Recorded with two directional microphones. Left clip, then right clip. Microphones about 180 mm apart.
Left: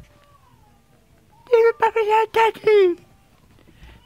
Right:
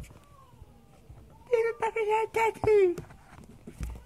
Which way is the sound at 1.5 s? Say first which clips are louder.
Left 11 dB; 30° left (ahead or behind).